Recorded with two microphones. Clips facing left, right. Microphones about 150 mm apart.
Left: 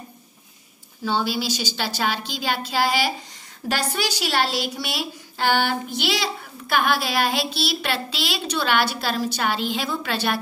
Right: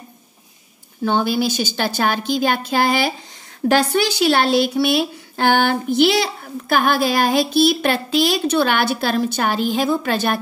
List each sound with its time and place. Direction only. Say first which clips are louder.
1.0 s a woman's voice: right 6 dB; 55° right (ahead or behind)